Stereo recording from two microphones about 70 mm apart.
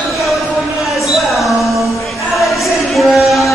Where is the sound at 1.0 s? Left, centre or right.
Centre.